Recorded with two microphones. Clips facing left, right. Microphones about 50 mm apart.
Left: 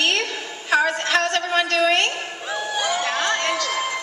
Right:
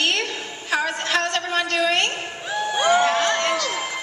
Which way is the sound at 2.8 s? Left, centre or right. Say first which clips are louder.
Right 6 dB; right.